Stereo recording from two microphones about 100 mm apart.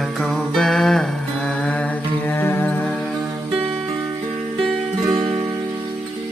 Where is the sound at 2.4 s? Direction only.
20° left (ahead or behind).